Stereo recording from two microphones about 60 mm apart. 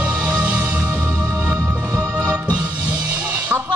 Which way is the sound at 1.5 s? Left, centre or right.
Right.